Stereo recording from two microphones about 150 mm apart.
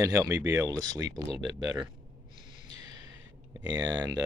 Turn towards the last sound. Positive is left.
turn(degrees=-25)  # may be behind; listen again after turning